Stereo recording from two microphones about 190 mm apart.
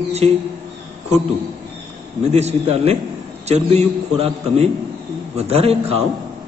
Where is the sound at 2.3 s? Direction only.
35° right (ahead or behind).